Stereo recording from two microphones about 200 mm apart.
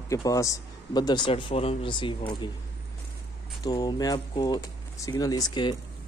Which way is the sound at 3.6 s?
20° left (ahead or behind).